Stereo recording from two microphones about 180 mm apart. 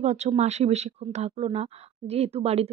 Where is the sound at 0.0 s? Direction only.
40° right (ahead or behind).